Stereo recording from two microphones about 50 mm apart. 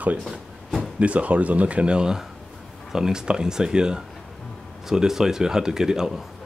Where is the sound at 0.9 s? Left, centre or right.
Right.